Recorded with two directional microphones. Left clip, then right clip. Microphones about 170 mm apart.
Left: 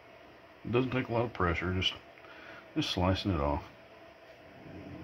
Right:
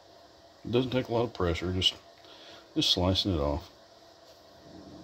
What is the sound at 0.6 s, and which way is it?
Speech, 55° right (ahead or behind).